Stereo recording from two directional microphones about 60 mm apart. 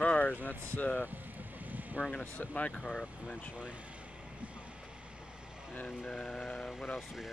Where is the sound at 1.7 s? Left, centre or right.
Right.